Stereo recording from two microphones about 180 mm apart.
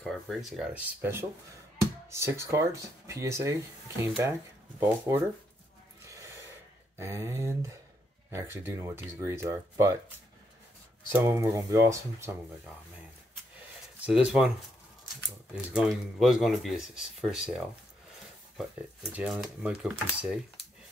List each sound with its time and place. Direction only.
0.0 s speech: centre (ahead or behind)
2.0 s speech: 15° right (ahead or behind)
7.0 s speech: 15° right (ahead or behind)
11.1 s speech: 15° right (ahead or behind)
14.0 s speech: 5° right (ahead or behind)
19.1 s speech: 5° right (ahead or behind)